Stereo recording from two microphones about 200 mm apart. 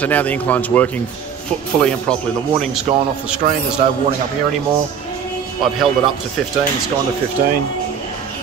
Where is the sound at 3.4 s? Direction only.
50° right (ahead or behind).